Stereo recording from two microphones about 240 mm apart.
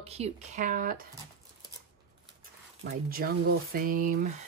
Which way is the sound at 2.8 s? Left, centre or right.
Right.